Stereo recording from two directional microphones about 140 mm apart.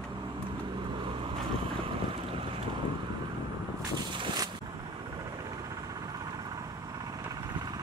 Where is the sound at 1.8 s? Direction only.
40° right (ahead or behind).